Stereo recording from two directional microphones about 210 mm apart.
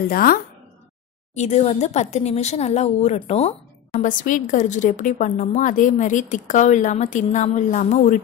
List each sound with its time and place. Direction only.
0.1 s a woman's voice: 45° left (ahead or behind)
1.3 s speech: 35° left (ahead or behind)